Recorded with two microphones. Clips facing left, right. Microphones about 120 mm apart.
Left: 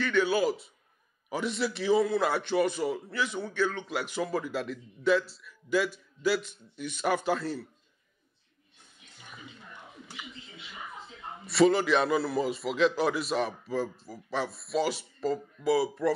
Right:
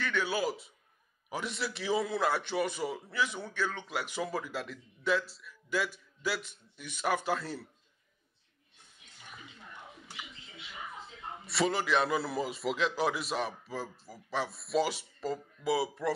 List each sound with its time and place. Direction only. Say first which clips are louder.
0.0 s a man's voice: left 6 dB; 5° right (ahead or behind)
11.5 s a man's voice: left 6 dB; 5° right (ahead or behind)
12.2 s speech: left 5 dB; 10° right (ahead or behind)